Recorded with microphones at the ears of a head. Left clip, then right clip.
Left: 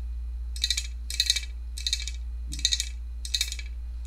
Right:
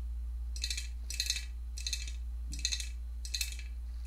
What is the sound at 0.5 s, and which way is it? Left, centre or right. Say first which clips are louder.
Coin: left 11 dB; left.